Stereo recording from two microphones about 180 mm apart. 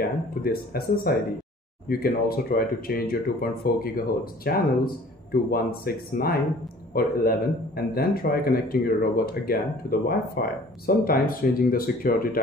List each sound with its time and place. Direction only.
0.4 s speech: 55° left (ahead or behind)